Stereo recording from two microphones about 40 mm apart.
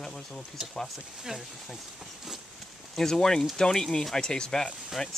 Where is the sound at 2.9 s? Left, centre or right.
Centre.